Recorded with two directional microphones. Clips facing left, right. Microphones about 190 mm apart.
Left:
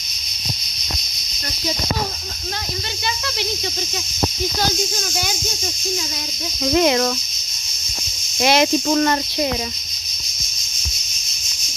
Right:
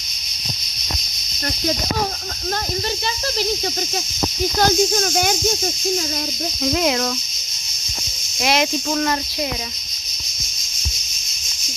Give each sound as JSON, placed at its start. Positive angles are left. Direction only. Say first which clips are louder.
{"t": 4.6, "sound": "speech", "louder": "right 8 dB", "side_deg": -55}
{"t": 6.6, "sound": "speech", "louder": "left 4 dB", "side_deg": 0}
{"t": 8.4, "sound": "speech", "louder": "left 4 dB", "side_deg": 0}